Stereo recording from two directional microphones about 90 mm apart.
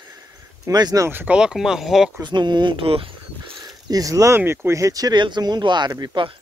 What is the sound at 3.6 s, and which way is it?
Speech, 50° right (ahead or behind).